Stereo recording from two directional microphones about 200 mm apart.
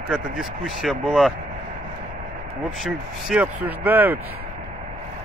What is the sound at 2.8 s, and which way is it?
Speech, 5° right (ahead or behind).